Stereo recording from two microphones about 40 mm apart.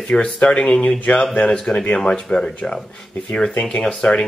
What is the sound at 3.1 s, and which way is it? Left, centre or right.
Speech, left.